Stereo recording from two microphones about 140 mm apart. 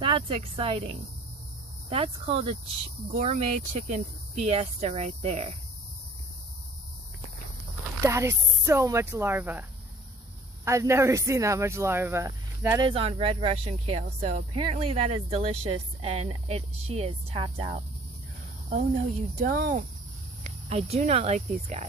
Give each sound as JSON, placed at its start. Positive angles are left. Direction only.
{"t": 0.0, "sound": "speech", "side_deg": -40}
{"t": 8.0, "sound": "speech", "side_deg": -20}
{"t": 12.9, "sound": "speech", "side_deg": -45}
{"t": 19.3, "sound": "speech", "side_deg": -75}
{"t": 20.4, "sound": "speech", "side_deg": -45}